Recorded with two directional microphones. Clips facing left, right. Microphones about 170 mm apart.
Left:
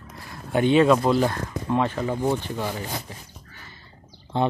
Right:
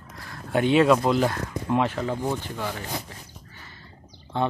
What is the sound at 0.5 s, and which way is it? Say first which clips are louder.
Speech: left 1 dB; centre (ahead or behind).